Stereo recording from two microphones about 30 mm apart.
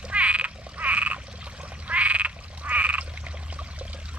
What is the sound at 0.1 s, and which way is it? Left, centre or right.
Frog, right.